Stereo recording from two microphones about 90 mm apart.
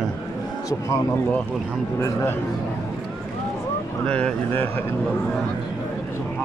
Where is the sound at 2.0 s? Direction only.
30° left (ahead or behind).